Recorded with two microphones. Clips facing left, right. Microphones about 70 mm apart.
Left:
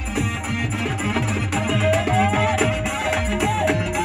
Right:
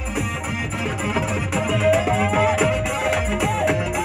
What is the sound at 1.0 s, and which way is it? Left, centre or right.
Music, centre.